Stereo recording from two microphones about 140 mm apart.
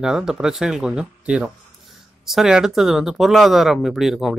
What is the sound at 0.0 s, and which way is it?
A man's voice, 5° right (ahead or behind).